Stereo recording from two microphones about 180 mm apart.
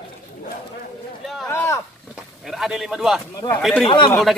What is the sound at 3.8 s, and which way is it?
Speech, 25° left (ahead or behind).